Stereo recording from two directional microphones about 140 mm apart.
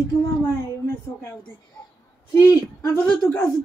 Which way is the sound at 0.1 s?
20° left (ahead or behind).